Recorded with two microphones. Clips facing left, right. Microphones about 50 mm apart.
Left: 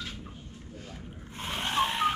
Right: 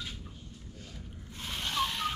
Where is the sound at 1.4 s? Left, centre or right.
Left.